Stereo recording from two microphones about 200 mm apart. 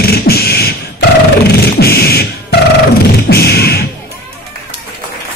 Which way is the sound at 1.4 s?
55° left (ahead or behind).